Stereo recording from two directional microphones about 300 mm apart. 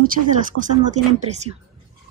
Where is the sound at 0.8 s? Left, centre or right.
Right.